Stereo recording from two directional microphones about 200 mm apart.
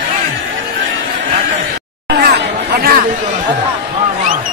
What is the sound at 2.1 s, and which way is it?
Chatter, 55° right (ahead or behind).